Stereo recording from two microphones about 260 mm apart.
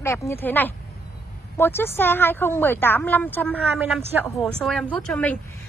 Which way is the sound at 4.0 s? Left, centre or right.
Centre.